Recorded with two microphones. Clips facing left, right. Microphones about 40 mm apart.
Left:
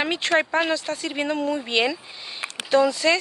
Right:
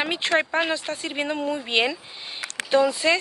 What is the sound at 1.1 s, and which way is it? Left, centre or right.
Speech, centre.